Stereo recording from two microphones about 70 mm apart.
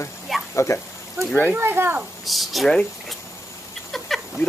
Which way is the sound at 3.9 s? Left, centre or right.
Centre.